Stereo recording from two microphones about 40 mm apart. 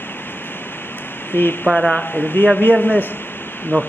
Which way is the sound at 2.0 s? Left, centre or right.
Left.